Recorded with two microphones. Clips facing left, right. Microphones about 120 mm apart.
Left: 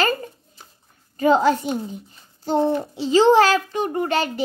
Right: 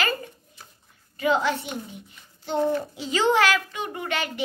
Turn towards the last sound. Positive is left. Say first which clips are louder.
# left 7 dB
turn(degrees=35)  # may be behind; listen again after turning